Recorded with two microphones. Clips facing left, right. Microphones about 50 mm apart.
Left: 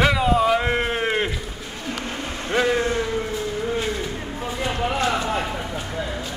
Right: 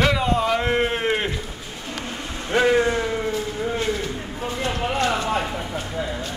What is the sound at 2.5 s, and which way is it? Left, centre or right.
Speech, centre.